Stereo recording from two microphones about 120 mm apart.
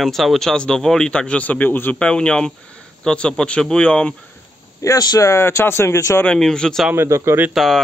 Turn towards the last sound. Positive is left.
turn(degrees=0)  # may be behind; listen again after turning